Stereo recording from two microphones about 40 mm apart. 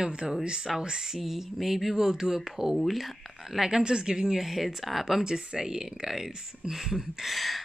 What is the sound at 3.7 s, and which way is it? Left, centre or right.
Speech, centre.